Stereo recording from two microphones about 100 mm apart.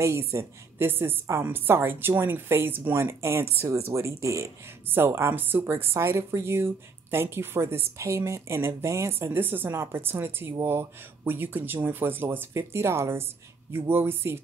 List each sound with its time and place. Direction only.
0.0 s a woman's voice: 30° right (ahead or behind)